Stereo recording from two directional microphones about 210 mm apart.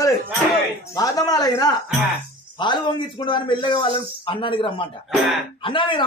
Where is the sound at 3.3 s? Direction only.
25° left (ahead or behind).